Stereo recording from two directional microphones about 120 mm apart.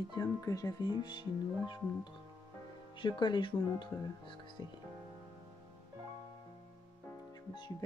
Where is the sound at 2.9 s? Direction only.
40° left (ahead or behind).